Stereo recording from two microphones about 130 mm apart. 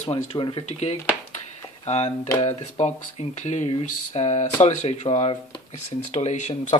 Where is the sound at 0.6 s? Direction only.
55° left (ahead or behind).